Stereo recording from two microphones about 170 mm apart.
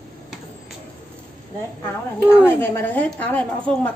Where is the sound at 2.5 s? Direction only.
15° left (ahead or behind).